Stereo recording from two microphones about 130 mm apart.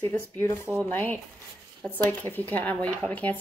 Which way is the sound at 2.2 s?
15° left (ahead or behind).